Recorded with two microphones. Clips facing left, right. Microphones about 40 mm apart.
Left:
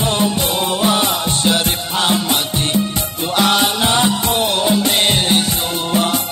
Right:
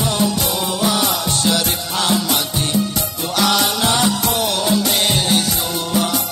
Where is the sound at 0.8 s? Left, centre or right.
Left.